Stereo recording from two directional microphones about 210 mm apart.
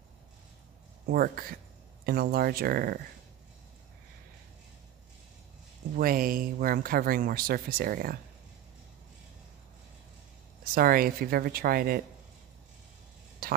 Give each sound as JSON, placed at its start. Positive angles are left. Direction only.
{"t": 1.0, "sound": "speech", "side_deg": -45}
{"t": 5.9, "sound": "speech", "side_deg": -45}
{"t": 10.6, "sound": "speech", "side_deg": -45}
{"t": 13.4, "sound": "a sound", "side_deg": -45}